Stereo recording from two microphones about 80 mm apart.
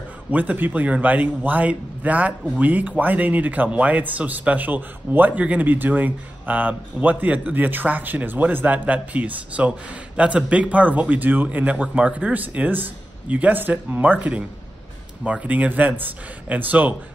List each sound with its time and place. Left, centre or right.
0.3 s speech: right
15.4 s speech: centre